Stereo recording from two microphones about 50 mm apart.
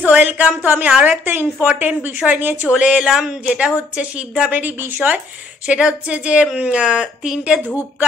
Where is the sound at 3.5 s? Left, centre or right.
Right.